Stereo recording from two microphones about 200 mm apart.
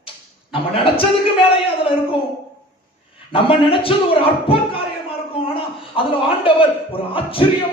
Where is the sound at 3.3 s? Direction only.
25° left (ahead or behind).